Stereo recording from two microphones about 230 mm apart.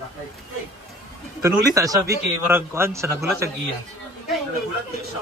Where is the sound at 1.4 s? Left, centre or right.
Centre.